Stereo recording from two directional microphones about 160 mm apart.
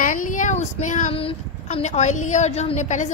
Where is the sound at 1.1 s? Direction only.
40° left (ahead or behind).